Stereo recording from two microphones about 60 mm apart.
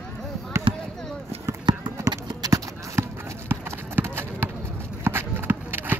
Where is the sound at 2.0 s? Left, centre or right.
Right.